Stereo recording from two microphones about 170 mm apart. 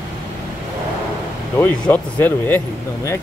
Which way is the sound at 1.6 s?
10° left (ahead or behind).